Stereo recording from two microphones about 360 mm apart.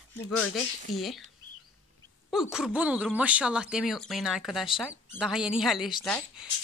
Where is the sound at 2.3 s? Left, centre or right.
Centre.